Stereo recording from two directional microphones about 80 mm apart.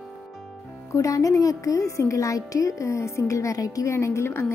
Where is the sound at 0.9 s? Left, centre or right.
Left.